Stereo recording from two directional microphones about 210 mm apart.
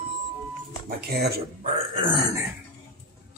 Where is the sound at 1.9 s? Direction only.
20° right (ahead or behind).